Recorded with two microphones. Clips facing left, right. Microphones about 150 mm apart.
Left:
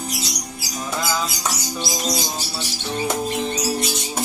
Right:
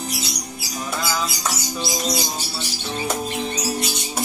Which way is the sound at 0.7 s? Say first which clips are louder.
Left 1 dB; 15° left (ahead or behind).